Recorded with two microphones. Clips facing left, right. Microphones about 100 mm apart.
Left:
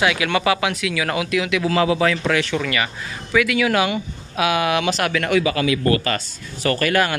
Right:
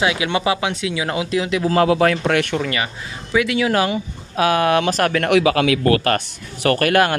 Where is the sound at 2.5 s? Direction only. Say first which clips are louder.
Even; 30° right (ahead or behind).